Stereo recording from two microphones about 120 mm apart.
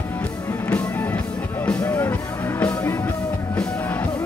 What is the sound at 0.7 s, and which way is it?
Music, 15° left (ahead or behind).